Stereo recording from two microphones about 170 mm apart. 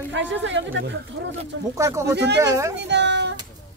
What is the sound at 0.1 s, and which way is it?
Speech, 90° right.